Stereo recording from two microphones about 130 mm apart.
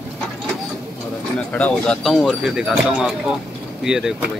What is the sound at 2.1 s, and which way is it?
Speech, 5° right (ahead or behind).